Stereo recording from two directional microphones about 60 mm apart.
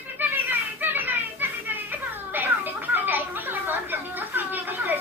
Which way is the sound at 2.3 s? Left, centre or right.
Right.